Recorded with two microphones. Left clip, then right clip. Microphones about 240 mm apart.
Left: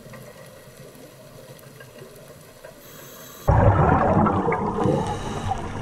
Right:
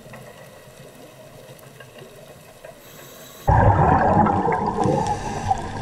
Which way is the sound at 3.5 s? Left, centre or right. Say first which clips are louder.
Right 3 dB; right.